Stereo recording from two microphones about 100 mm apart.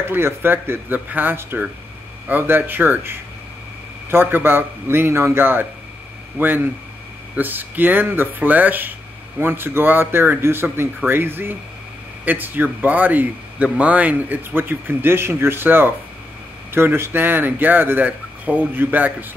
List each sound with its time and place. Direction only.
0.0 s speech: 20° right (ahead or behind)